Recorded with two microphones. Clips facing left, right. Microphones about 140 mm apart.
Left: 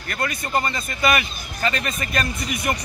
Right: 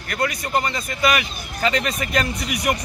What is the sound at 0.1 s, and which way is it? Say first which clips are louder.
Speech: right 2 dB; 15° right (ahead or behind).